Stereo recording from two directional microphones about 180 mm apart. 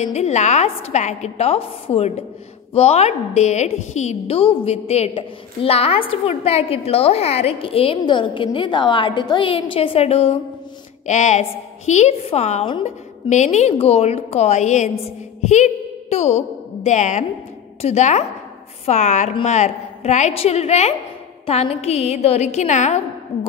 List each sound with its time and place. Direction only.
0.0 s a woman's voice: 40° left (ahead or behind)